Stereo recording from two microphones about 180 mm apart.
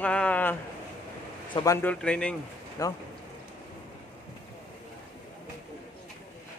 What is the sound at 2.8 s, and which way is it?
Speech, 20° left (ahead or behind).